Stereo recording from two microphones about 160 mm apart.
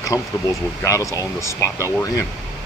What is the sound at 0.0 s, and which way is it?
Speech, 20° left (ahead or behind).